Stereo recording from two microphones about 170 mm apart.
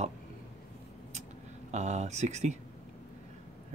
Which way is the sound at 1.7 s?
40° right (ahead or behind).